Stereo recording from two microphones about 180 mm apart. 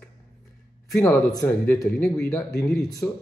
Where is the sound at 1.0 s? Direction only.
20° left (ahead or behind).